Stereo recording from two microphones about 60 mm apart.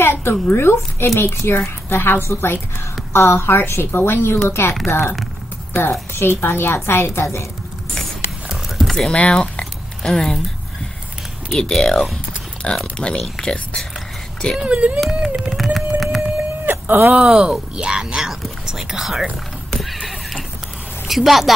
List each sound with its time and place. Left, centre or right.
0.0 s a woman's voice: left
8.5 s a sound: centre
9.1 s speech: centre
11.5 s speech: centre
14.6 s speech: centre
15.2 s a sound: centre
16.8 s speech: right
17.2 s speech: centre
19.7 s horse: centre
21.1 s a woman's voice: centre